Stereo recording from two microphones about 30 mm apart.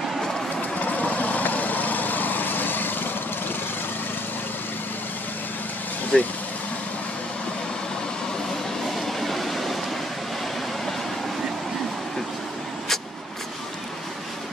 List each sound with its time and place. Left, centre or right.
0.6 s vehicle: left
6.1 s speech: left
8.8 s train: centre